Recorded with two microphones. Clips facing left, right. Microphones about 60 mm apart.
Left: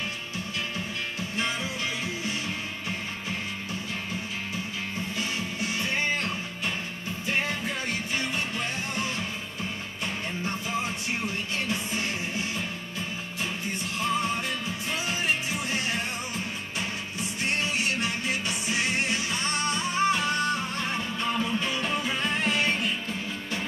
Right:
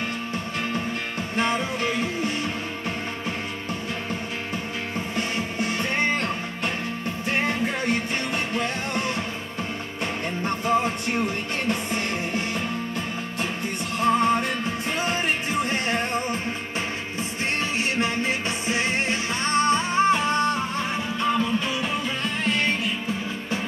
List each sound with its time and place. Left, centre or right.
1.3 s music: right
5.1 s music: right
10.4 s music: right
14.0 s music: right
17.7 s music: right
20.9 s music: centre
22.0 s music: centre